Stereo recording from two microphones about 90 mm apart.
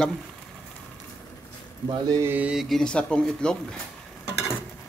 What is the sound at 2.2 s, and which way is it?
Mantra, 20° right (ahead or behind).